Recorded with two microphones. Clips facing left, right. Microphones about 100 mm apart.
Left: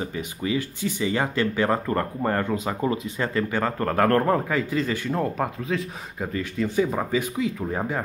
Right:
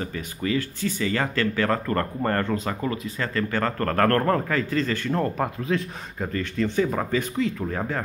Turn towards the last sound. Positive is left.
turn(degrees=10)  # may be behind; listen again after turning